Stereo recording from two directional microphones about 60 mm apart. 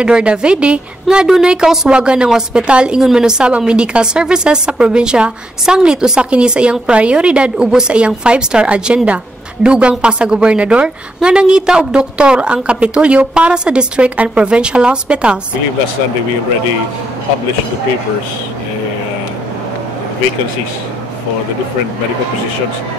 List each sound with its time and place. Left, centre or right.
0.0 s a woman's voice: centre